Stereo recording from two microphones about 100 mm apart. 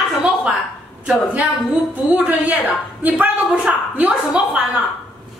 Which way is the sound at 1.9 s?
15° right (ahead or behind).